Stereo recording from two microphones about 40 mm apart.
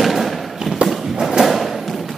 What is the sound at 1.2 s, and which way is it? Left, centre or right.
Thump, centre.